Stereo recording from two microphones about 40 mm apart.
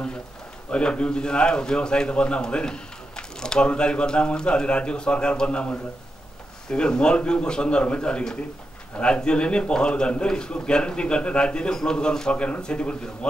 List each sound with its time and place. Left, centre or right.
0.7 s a man's voice: left
12.3 s a man's voice: left